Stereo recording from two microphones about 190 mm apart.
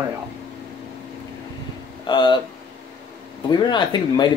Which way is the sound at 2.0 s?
25° left (ahead or behind).